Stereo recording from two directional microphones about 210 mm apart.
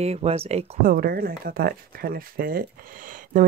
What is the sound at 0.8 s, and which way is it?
Speech, 45° right (ahead or behind).